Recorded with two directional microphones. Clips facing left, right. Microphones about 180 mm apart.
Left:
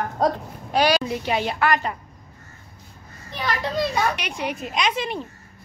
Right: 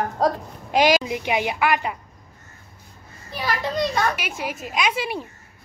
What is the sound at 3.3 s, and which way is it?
Speech, centre (ahead or behind).